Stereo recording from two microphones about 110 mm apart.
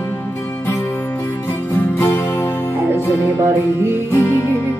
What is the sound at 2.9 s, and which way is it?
Music, 20° right (ahead or behind).